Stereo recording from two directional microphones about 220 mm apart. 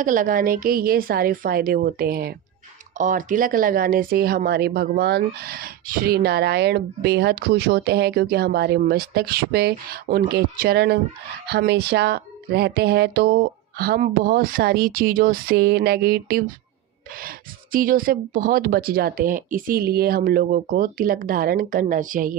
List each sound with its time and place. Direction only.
0.0 s speech: 35° right (ahead or behind)
17.7 s speech: 40° right (ahead or behind)